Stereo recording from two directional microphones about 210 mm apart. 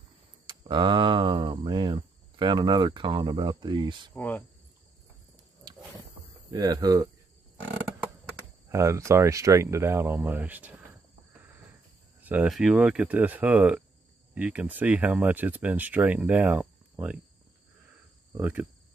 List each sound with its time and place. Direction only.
0.5 s speech: 20° right (ahead or behind)
4.1 s cricket: 10° left (ahead or behind)
6.5 s speech: 20° right (ahead or behind)
8.6 s speech: 15° right (ahead or behind)
12.2 s speech: 5° right (ahead or behind)
18.3 s speech: 10° right (ahead or behind)